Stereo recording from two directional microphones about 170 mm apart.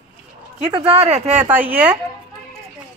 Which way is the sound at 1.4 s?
10° right (ahead or behind).